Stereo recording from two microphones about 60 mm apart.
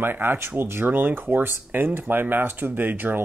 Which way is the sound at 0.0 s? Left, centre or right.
Right.